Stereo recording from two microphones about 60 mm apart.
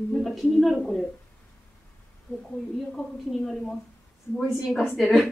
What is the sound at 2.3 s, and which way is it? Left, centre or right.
Speech, left.